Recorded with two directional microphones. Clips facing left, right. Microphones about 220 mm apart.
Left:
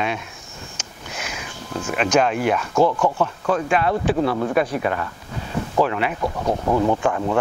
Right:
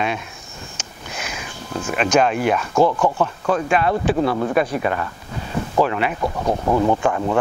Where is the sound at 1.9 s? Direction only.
20° right (ahead or behind).